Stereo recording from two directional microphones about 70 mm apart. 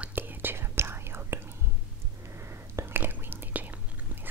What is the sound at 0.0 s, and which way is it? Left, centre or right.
Whispering, right.